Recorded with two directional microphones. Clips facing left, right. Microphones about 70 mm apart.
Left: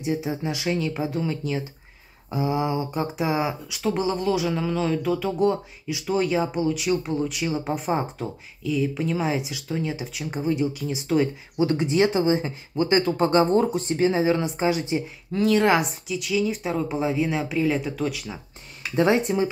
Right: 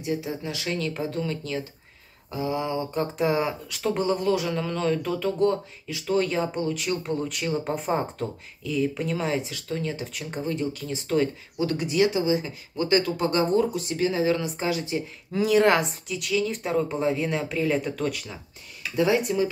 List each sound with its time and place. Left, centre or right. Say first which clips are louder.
0.0 s speech: left 3 dB; left
11.5 s speech: left 4 dB; left
15.3 s speech: even; centre
18.8 s speech: left 2 dB; left